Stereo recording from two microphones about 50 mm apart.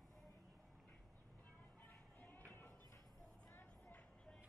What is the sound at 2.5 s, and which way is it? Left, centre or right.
Music, left.